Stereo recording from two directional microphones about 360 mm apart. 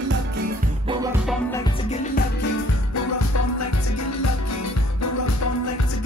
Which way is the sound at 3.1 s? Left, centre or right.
Left.